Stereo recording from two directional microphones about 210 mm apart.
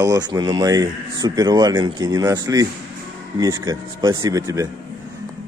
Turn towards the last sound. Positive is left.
turn(degrees=-15)  # may be behind; listen again after turning